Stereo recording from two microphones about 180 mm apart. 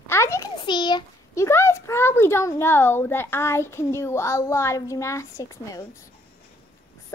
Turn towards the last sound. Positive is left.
turn(degrees=20)  # may be behind; listen again after turning